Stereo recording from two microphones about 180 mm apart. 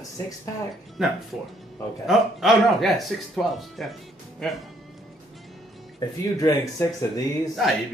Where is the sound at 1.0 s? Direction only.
5° right (ahead or behind).